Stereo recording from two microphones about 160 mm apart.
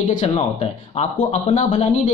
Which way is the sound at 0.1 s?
45° left (ahead or behind).